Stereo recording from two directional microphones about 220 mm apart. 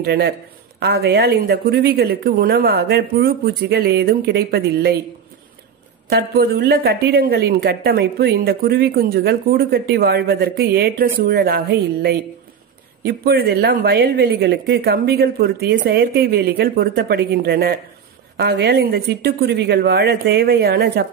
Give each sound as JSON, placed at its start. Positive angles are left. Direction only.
{"t": 0.0, "sound": "speech", "side_deg": -45}
{"t": 6.0, "sound": "speech", "side_deg": -45}